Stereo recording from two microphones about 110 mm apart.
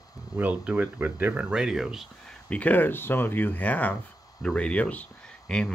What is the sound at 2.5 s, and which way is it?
Speech, 15° left (ahead or behind).